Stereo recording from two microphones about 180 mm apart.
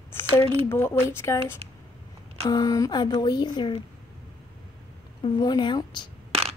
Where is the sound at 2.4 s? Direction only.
20° left (ahead or behind).